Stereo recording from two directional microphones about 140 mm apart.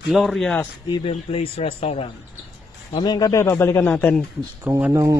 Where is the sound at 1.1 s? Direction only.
45° left (ahead or behind).